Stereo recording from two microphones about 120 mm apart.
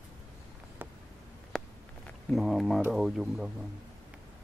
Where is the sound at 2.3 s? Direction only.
Centre (ahead or behind).